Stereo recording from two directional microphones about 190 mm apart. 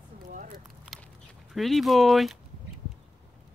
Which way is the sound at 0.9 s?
Centre (ahead or behind).